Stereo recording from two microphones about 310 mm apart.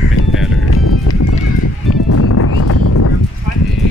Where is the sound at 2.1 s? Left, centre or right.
Left.